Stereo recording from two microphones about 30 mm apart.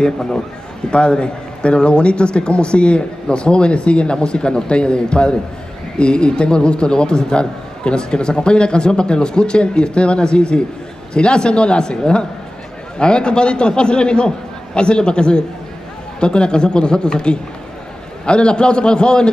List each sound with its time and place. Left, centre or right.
0.0 s a man's voice: left
0.8 s a man's voice: left